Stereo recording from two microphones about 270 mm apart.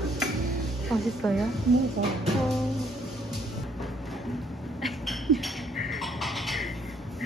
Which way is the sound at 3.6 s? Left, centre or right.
Centre.